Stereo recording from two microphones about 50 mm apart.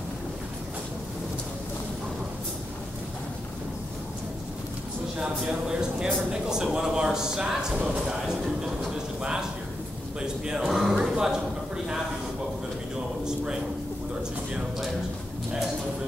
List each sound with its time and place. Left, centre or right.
5.4 s speech: centre
10.7 s speech: centre